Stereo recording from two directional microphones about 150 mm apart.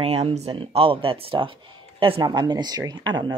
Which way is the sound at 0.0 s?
45° right (ahead or behind).